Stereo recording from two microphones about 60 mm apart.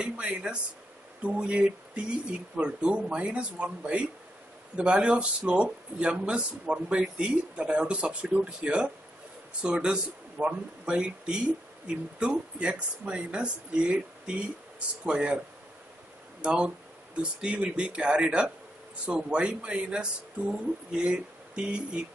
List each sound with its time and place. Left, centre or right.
0.0 s a man's voice: centre